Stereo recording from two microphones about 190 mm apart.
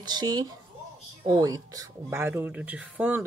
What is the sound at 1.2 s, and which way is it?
Speech, 20° right (ahead or behind).